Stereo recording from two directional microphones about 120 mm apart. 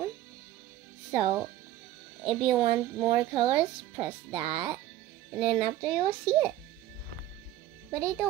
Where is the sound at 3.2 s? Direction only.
50° right (ahead or behind).